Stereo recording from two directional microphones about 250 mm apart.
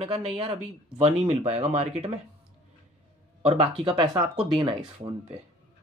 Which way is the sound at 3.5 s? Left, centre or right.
Right.